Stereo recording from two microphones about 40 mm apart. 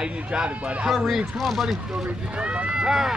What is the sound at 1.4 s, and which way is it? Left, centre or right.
Speech, centre.